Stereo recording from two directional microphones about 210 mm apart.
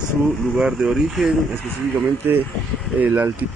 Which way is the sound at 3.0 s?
10° right (ahead or behind).